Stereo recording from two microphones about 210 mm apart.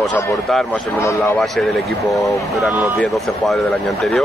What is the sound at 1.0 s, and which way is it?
Speech, 15° left (ahead or behind).